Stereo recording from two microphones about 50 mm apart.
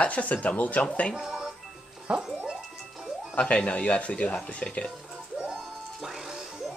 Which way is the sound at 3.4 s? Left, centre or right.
Left.